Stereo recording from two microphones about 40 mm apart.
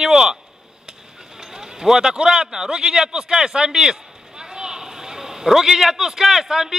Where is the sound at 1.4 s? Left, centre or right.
Centre.